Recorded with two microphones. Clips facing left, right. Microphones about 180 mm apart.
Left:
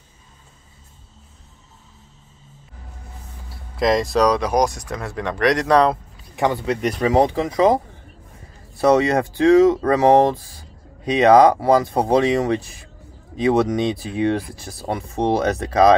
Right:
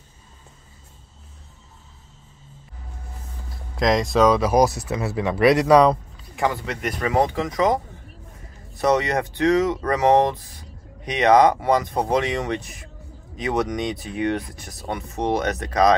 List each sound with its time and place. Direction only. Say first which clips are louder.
3.7 s speech: left 1 dB; centre (ahead or behind)
6.4 s speech: left 4 dB; 25° left (ahead or behind)